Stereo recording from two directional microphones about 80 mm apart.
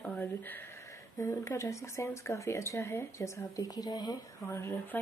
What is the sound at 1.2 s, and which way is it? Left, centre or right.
Speech, left.